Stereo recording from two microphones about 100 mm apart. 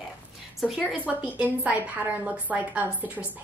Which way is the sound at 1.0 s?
15° right (ahead or behind).